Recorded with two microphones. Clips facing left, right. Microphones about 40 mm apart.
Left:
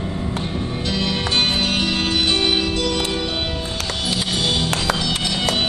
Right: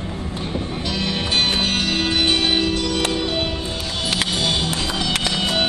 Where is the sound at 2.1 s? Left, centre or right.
Right.